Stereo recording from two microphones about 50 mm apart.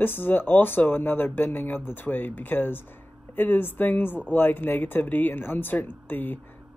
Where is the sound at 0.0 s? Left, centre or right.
Left.